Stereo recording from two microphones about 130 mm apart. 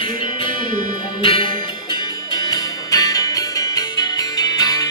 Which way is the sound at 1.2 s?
40° left (ahead or behind).